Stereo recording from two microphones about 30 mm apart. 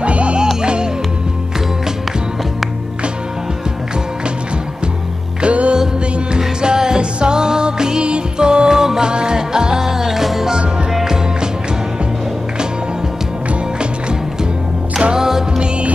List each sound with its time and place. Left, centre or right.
0.0 s music: right
0.6 s music: right
5.4 s music: right
6.3 s music: right
9.8 s music: centre
15.1 s music: centre